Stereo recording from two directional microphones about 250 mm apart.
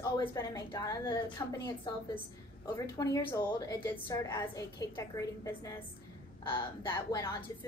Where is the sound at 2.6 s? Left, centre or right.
Centre.